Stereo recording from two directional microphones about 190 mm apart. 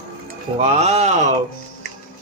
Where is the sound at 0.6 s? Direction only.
35° right (ahead or behind).